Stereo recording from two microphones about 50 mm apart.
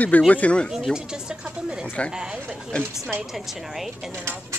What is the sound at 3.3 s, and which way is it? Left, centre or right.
Speech, centre.